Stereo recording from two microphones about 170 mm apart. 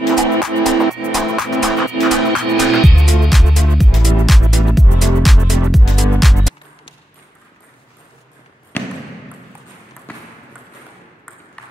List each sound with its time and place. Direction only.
0.0 s music: centre (ahead or behind)
8.7 s basketball bounce: 10° left (ahead or behind)
10.1 s ping: 10° left (ahead or behind)